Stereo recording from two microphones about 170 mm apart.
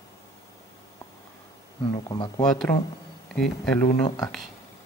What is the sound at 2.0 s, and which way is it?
Speech, 25° left (ahead or behind).